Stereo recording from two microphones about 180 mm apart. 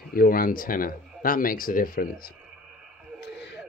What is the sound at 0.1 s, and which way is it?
Speech, 55° left (ahead or behind).